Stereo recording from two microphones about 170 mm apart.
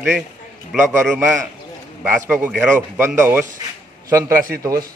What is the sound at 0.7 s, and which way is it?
A man's voice, 10° right (ahead or behind).